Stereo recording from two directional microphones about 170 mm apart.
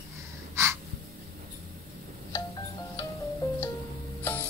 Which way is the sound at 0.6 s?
15° right (ahead or behind).